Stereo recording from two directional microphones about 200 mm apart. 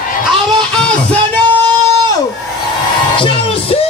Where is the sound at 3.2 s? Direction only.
25° left (ahead or behind).